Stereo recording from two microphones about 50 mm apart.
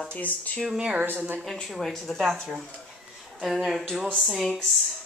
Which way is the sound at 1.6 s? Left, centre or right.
Centre.